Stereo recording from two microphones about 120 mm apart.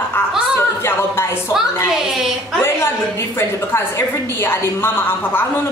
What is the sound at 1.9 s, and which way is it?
Speech, 5° right (ahead or behind).